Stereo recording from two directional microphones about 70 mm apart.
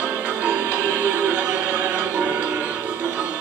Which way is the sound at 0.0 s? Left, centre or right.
Right.